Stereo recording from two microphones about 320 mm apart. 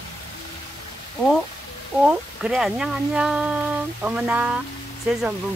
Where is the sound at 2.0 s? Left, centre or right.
Centre.